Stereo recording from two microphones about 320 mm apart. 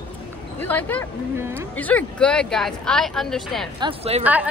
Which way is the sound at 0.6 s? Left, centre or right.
Centre.